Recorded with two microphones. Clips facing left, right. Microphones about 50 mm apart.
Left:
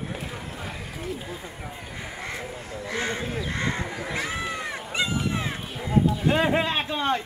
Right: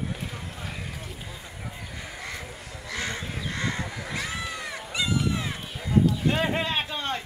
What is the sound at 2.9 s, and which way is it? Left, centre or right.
Speech, left.